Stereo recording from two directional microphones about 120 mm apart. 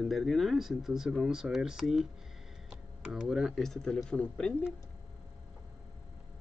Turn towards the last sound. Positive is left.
turn(degrees=10)  # may be behind; listen again after turning